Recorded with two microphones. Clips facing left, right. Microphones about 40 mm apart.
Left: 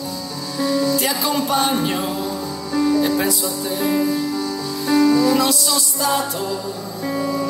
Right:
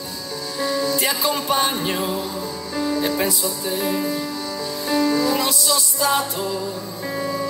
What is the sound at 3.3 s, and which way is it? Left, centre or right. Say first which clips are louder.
Music: left 2 dB; left.